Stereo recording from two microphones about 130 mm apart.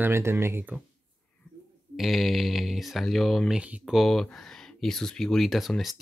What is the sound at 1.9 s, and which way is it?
Speech, centre (ahead or behind).